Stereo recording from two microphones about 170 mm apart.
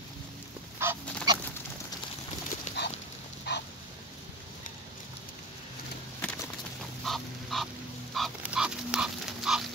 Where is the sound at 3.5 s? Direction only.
75° left (ahead or behind).